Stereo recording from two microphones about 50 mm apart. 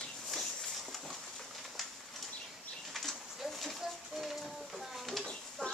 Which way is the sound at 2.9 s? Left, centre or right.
Centre.